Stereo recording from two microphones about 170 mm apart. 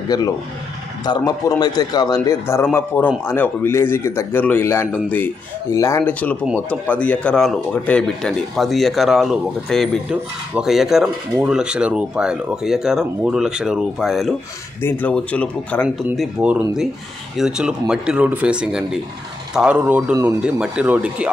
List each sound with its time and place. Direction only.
0.1 s a man's voice: 20° left (ahead or behind); by 14.3 s centre (ahead or behind)
14.8 s a man's voice: 10° left (ahead or behind)
16.2 s speech: 5° right (ahead or behind)